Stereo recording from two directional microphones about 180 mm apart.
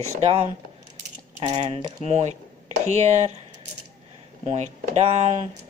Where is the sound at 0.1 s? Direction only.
40° right (ahead or behind).